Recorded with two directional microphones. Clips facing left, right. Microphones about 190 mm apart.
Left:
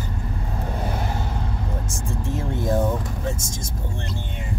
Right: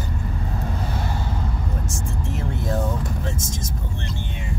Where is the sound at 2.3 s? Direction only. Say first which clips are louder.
Left 4 dB; 25° left (ahead or behind).